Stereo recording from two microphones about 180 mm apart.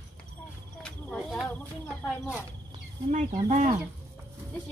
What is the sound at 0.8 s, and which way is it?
Cricket, 5° left (ahead or behind).